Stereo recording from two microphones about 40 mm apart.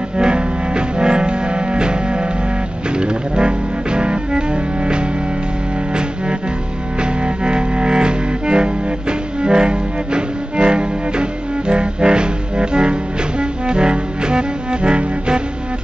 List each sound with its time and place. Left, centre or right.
0.2 s music: right
3.0 s music: right
7.0 s music: right